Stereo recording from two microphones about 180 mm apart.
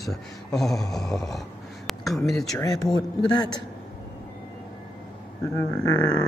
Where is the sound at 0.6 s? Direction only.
Centre (ahead or behind).